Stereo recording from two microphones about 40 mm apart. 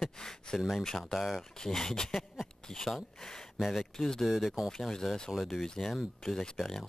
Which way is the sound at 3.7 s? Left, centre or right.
Centre.